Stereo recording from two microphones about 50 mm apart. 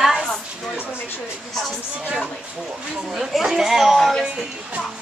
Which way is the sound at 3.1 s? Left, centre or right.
Centre.